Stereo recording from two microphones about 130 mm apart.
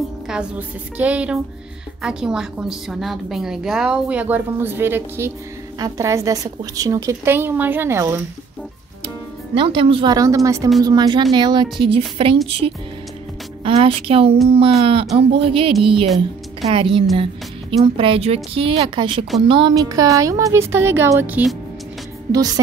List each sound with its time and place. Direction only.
0.3 s a woman's voice: 10° right (ahead or behind)
9.6 s a woman's voice: 45° right (ahead or behind)
10.1 s a woman's voice: 25° right (ahead or behind)